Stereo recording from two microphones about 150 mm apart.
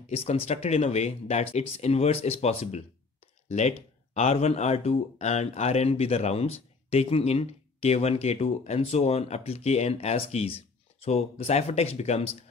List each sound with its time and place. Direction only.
0.1 s speech: 40° left (ahead or behind)